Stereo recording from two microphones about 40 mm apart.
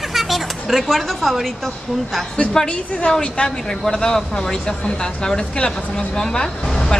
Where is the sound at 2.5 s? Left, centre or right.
Centre.